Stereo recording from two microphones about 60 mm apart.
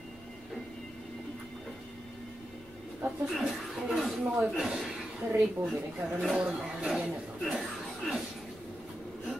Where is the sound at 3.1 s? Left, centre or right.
Centre.